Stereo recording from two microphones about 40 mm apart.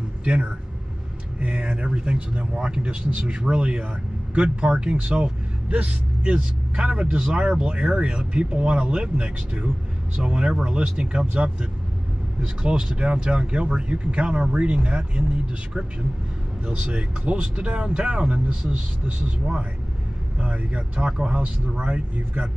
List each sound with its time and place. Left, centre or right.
0.2 s speech: right
16.6 s speech: right
20.5 s speech: right